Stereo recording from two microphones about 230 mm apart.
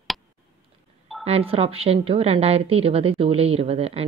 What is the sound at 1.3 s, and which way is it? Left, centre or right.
A woman's voice, right.